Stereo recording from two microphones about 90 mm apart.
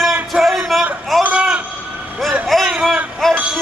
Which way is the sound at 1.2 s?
10° right (ahead or behind).